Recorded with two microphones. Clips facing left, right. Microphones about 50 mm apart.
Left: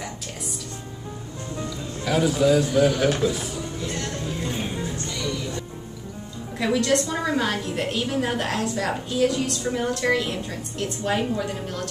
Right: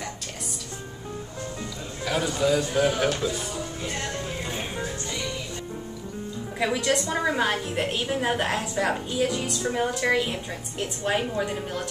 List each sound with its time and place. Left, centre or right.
2.0 s a man's voice: centre
2.7 s a woman's voice: centre
3.1 s speech: centre
3.8 s music: centre
6.6 s a woman's voice: centre